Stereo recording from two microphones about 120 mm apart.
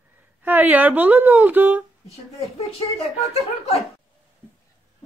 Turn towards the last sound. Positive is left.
turn(degrees=55)  # may be behind; listen again after turning